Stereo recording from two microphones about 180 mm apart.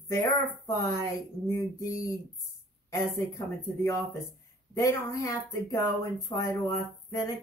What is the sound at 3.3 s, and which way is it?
Speech, 15° left (ahead or behind).